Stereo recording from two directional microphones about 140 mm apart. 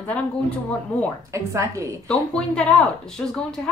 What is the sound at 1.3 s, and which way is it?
Speech, 20° right (ahead or behind).